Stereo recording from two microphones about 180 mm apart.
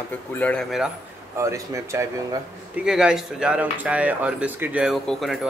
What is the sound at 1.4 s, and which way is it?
Speech, 15° right (ahead or behind).